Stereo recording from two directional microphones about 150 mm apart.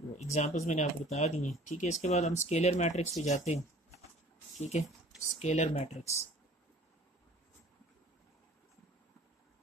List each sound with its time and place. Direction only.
0.2 s speech: 50° left (ahead or behind)
4.8 s speech: centre (ahead or behind)
5.4 s speech: 50° left (ahead or behind)